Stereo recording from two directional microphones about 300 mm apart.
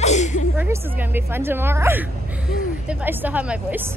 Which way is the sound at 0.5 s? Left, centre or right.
Centre.